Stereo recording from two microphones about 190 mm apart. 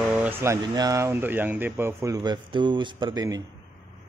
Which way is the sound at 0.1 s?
10° right (ahead or behind).